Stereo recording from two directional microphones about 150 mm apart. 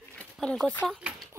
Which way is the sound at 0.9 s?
5° right (ahead or behind).